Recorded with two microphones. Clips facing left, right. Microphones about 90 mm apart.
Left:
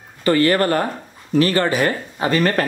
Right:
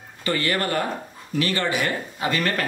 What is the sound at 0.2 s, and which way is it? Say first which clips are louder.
Speech: left 8 dB; 40° left (ahead or behind).